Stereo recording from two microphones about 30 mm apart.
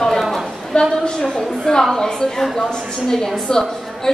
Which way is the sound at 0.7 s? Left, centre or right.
Left.